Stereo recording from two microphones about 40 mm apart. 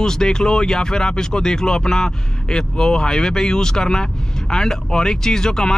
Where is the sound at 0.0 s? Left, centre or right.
Centre.